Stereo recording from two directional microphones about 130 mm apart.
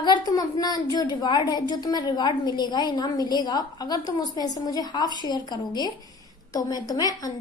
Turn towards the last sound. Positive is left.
turn(degrees=30)  # may be behind; listen again after turning